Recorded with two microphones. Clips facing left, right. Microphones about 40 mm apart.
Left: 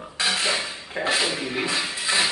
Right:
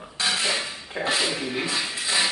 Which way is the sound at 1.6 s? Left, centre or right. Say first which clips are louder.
Left 2 dB; centre.